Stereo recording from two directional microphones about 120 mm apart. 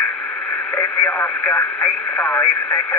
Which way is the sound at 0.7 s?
15° left (ahead or behind).